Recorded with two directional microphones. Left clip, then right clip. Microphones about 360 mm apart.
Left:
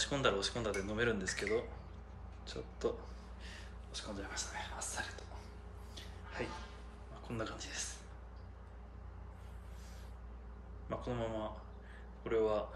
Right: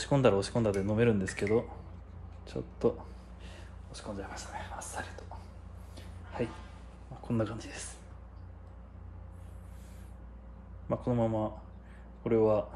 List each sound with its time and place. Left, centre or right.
0.0 s speech: centre
2.4 s speech: centre
3.4 s a sound: centre
7.2 s speech: centre
10.9 s speech: centre